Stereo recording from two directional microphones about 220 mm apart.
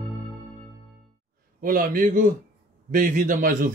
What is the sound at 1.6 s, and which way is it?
A man's voice, 40° right (ahead or behind).